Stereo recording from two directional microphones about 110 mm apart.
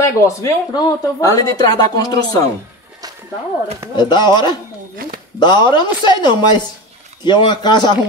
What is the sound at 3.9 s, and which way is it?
A man's voice, 40° left (ahead or behind).